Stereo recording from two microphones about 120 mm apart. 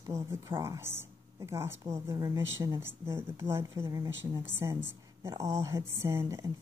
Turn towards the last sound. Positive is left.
turn(degrees=-25)  # may be behind; listen again after turning